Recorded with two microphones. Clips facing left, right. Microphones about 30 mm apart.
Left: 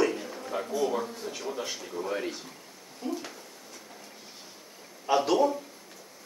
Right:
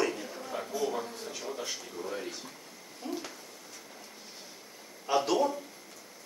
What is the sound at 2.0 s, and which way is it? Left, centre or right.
Speech, left.